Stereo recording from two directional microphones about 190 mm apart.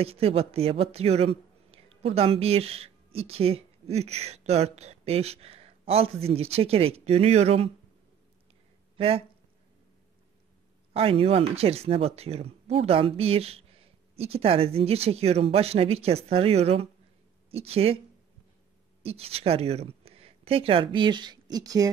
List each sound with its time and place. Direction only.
0.0 s speech: 30° right (ahead or behind)
8.9 s speech: 30° right (ahead or behind)
10.9 s speech: 30° right (ahead or behind)
19.0 s speech: 30° right (ahead or behind)